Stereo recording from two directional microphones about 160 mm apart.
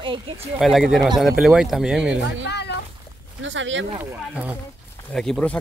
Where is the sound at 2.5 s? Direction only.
90° left.